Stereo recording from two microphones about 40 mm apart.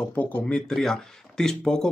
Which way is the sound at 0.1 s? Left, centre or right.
Left.